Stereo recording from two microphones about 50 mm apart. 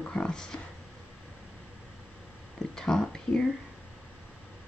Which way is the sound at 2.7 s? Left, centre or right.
Centre.